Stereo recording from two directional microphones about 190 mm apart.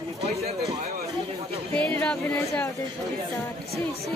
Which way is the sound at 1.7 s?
5° left (ahead or behind).